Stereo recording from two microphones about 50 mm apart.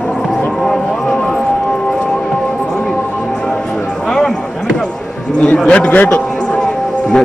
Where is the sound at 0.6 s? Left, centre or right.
Centre.